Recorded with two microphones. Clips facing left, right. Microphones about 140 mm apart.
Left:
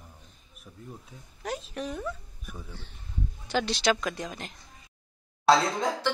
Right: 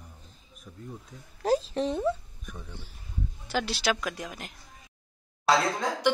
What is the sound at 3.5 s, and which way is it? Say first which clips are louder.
A woman's voice: left 2 dB; 5° right (ahead or behind).